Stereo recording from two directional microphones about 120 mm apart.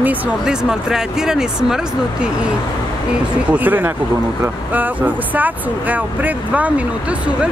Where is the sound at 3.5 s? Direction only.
15° right (ahead or behind).